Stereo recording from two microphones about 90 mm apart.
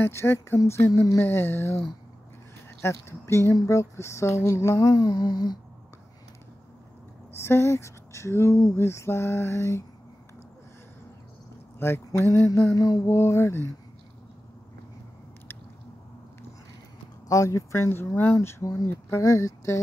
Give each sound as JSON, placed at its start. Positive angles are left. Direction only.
{"t": 0.0, "sound": "speech", "side_deg": 30}
{"t": 2.8, "sound": "speech", "side_deg": 30}
{"t": 4.8, "sound": "humming", "side_deg": 50}
{"t": 7.3, "sound": "speech", "side_deg": 30}
{"t": 11.8, "sound": "speech", "side_deg": 25}
{"t": 13.1, "sound": "speech", "side_deg": 30}
{"t": 17.3, "sound": "speech", "side_deg": 40}